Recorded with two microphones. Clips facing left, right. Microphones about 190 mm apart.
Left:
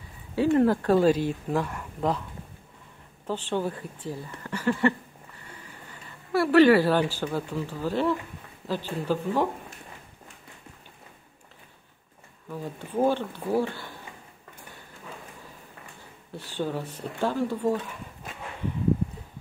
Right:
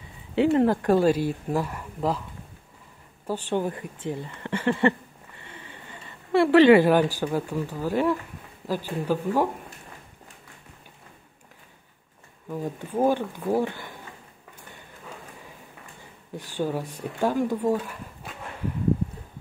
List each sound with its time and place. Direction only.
0.7 s speech: 10° right (ahead or behind)
3.3 s speech: 15° right (ahead or behind)
5.4 s sniff: 25° right (ahead or behind)
6.3 s speech: 25° right (ahead or behind)
12.4 s speech: 15° right (ahead or behind)
16.3 s speech: 15° right (ahead or behind)